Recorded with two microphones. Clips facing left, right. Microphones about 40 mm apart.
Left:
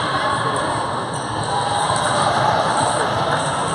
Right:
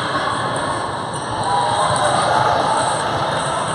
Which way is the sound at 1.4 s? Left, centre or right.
Centre.